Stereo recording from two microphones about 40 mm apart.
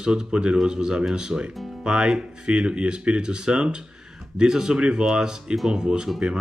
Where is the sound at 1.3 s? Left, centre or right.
Right.